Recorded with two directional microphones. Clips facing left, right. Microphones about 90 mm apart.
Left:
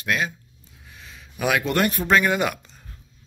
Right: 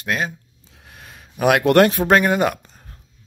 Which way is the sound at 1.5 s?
70° right (ahead or behind).